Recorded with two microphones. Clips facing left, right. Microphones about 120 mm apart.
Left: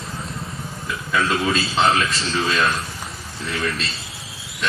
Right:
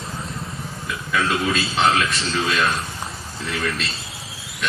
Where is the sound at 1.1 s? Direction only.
25° left (ahead or behind).